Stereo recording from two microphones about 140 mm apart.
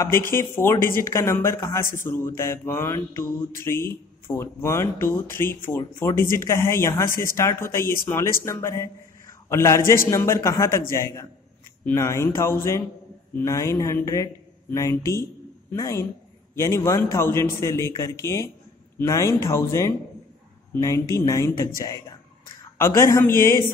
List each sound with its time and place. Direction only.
0.0 s a man's voice: 15° left (ahead or behind)